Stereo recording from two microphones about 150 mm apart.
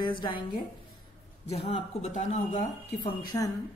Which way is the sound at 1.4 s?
45° left (ahead or behind).